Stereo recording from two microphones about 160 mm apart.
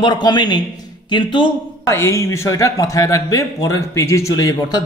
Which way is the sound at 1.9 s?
15° left (ahead or behind).